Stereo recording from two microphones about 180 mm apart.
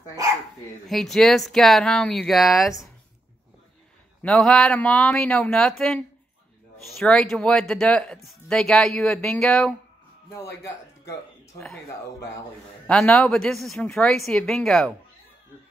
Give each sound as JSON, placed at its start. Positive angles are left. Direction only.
{"t": 0.8, "sound": "speech", "side_deg": 0}
{"t": 4.2, "sound": "speech", "side_deg": 5}
{"t": 10.3, "sound": "a man's voice", "side_deg": 15}
{"t": 12.8, "sound": "speech", "side_deg": 5}